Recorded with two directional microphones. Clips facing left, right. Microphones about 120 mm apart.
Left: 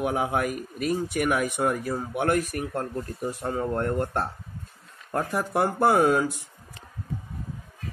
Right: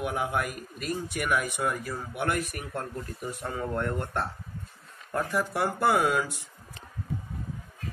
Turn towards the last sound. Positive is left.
turn(degrees=45)  # may be behind; listen again after turning